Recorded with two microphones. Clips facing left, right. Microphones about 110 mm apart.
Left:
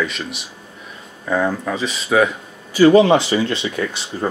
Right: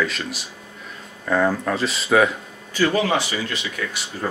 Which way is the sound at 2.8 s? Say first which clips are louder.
Left 9 dB; 20° left (ahead or behind).